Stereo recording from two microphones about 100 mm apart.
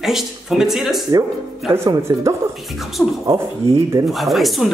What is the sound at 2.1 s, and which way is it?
Speech, 50° right (ahead or behind).